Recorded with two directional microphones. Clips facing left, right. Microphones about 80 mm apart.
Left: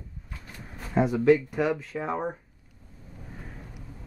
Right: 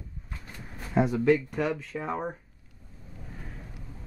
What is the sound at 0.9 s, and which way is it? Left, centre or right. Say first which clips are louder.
Speech: left 2 dB; centre.